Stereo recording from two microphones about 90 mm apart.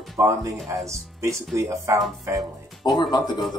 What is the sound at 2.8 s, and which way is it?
Speech, 55° left (ahead or behind).